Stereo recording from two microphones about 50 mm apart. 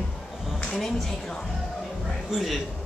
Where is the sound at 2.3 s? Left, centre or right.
Centre.